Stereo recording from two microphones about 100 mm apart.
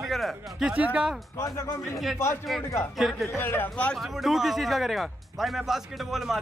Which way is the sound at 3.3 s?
20° left (ahead or behind).